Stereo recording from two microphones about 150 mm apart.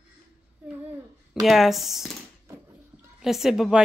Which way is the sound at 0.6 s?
10° right (ahead or behind).